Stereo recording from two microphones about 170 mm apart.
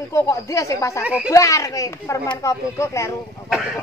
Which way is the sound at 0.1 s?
15° left (ahead or behind).